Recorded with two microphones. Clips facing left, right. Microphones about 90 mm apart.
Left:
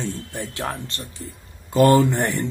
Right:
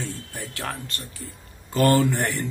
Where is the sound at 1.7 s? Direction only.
20° left (ahead or behind).